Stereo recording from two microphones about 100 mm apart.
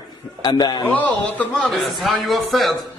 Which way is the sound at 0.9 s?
15° left (ahead or behind).